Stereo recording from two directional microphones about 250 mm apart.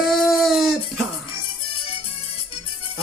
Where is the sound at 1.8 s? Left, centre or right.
Left.